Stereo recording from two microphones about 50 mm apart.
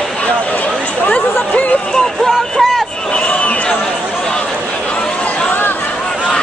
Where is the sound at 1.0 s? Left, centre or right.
Left.